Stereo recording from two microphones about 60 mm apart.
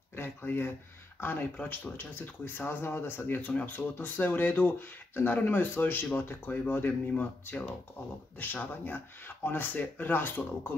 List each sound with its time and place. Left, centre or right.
0.1 s speech: left